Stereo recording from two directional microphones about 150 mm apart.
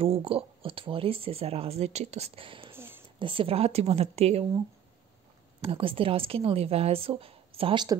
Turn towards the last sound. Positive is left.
turn(degrees=-30)  # may be behind; listen again after turning